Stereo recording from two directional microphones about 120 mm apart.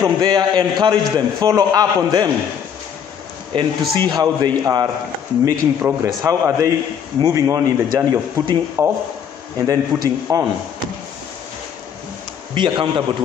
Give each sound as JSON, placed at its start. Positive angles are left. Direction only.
{"t": 0.0, "sound": "a man's voice", "side_deg": -35}
{"t": 3.5, "sound": "a man's voice", "side_deg": -35}
{"t": 12.5, "sound": "a man's voice", "side_deg": -40}